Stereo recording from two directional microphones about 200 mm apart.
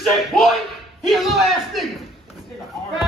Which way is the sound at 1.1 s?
Centre (ahead or behind).